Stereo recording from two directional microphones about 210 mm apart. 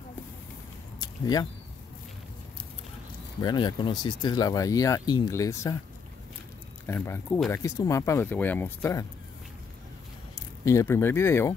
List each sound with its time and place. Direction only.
1.0 s a sound: 20° left (ahead or behind)
3.3 s speech: 20° left (ahead or behind)
6.9 s speech: 10° left (ahead or behind)
10.3 s speech: 15° left (ahead or behind)